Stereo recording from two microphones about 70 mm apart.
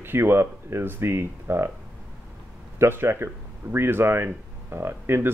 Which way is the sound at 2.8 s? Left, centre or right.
Right.